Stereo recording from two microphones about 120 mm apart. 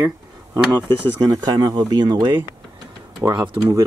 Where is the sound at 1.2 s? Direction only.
30° right (ahead or behind).